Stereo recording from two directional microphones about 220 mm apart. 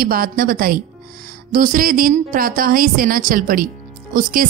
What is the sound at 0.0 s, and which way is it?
Speech, 40° right (ahead or behind).